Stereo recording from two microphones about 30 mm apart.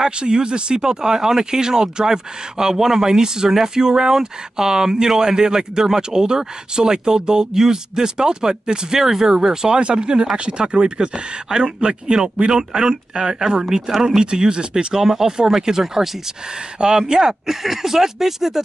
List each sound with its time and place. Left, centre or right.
0.0 s speech: right
15.0 s speech: centre
17.5 s speech: centre